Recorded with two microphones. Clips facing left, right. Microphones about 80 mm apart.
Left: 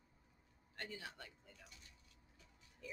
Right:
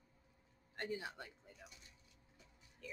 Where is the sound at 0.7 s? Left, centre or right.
Right.